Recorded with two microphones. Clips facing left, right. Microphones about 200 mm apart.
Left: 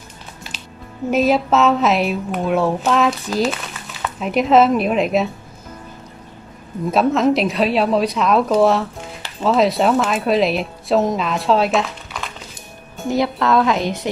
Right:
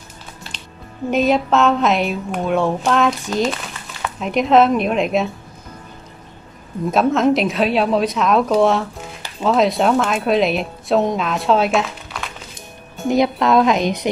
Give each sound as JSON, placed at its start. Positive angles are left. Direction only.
{"t": 1.1, "sound": "a woman's voice", "side_deg": 0}
{"t": 6.9, "sound": "a woman's voice", "side_deg": 0}
{"t": 13.1, "sound": "a woman's voice", "side_deg": -20}